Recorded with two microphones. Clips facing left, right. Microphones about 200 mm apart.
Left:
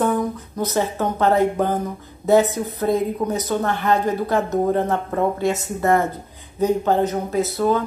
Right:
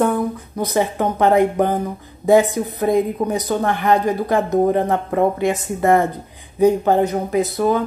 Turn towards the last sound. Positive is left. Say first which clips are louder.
# right 2 dB
turn(degrees=-15)  # may be behind; listen again after turning